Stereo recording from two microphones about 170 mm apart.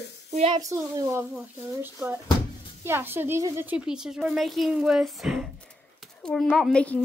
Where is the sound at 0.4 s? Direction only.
40° right (ahead or behind).